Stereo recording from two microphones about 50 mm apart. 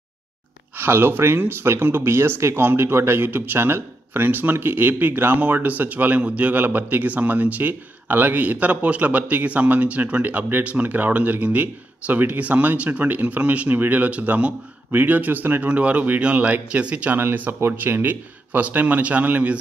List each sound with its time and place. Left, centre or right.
0.7 s a man's voice: right
17.2 s a man's voice: right